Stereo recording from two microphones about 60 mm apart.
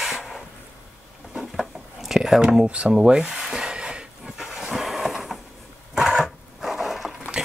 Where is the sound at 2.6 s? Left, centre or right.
Centre.